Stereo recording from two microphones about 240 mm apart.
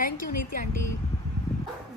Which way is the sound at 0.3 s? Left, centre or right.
Left.